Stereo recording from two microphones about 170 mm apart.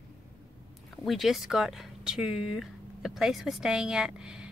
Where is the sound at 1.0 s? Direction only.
Centre (ahead or behind).